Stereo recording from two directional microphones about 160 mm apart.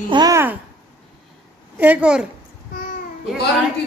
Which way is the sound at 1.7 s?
10° right (ahead or behind).